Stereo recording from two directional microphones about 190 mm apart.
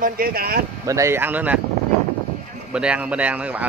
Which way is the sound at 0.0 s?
50° right (ahead or behind).